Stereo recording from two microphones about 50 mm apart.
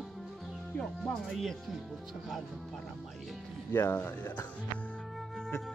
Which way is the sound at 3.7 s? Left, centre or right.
Left.